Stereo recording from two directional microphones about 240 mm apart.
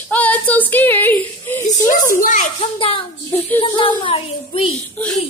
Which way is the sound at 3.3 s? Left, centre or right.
Centre.